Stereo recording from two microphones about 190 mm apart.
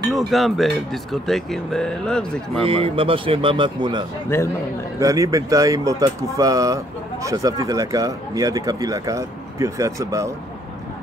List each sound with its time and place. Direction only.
0.1 s speech: centre (ahead or behind)
2.6 s a man's voice: 30° right (ahead or behind)
4.3 s a man's voice: 15° left (ahead or behind)
5.0 s speech: 15° right (ahead or behind)